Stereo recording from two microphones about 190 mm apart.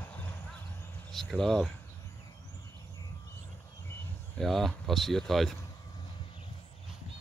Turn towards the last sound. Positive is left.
turn(degrees=0)  # may be behind; listen again after turning